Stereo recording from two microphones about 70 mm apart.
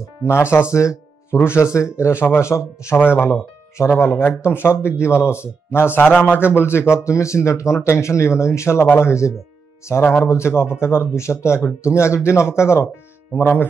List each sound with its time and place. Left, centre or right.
0.2 s speech: left